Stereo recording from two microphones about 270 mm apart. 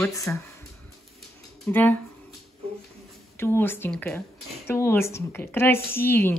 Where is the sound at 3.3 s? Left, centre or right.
Centre.